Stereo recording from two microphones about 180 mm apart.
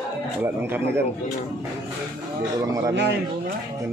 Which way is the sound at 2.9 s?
75° right (ahead or behind).